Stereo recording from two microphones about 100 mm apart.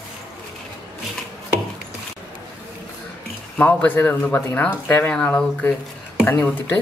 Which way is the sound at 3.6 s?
20° left (ahead or behind).